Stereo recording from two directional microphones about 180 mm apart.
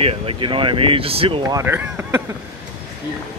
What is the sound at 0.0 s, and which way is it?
Speech, 35° right (ahead or behind).